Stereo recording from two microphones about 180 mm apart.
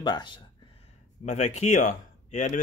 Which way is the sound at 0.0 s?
25° left (ahead or behind).